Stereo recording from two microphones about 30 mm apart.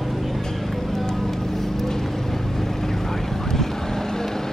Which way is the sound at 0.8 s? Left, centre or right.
Centre.